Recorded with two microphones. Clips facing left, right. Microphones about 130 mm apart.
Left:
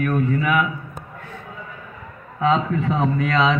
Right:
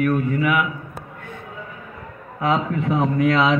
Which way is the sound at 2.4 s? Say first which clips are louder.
Left 1 dB; 10° right (ahead or behind).